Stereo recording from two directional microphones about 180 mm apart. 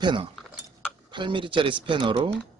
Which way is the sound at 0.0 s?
25° right (ahead or behind).